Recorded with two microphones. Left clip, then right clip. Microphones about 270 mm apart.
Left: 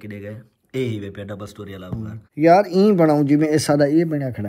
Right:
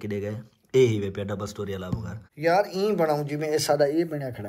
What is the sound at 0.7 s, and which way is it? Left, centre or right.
Speech, centre.